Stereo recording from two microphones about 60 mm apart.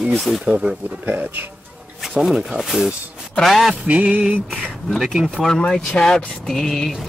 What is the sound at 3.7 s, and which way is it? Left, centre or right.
Speech, right.